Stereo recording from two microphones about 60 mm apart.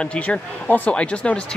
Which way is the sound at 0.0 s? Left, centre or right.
Centre.